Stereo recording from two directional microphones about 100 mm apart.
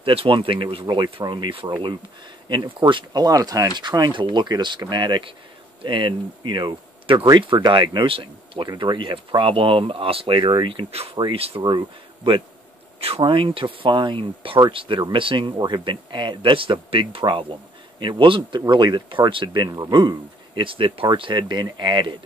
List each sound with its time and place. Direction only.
0.0 s speech: 65° right (ahead or behind)
10.9 s speech: 90° right
11.3 s speech: 75° right (ahead or behind)
13.2 s speech: 60° right (ahead or behind)
18.7 s speech: 45° right (ahead or behind)